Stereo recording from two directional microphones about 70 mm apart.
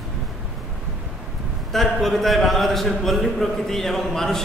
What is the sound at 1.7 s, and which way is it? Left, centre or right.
A man's voice, centre.